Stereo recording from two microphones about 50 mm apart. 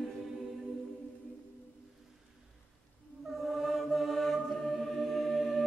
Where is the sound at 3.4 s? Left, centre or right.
Centre.